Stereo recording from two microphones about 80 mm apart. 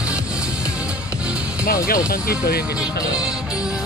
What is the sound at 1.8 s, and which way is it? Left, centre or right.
Speech, left.